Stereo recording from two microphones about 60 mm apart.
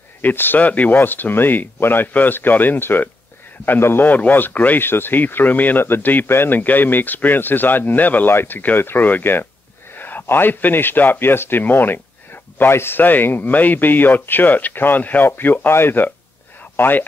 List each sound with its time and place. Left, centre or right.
0.2 s speech: left